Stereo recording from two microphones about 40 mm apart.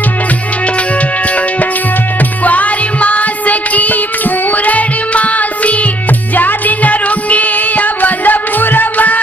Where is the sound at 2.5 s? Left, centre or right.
Left.